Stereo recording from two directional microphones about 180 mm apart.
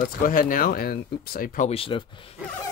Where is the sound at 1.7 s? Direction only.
30° left (ahead or behind).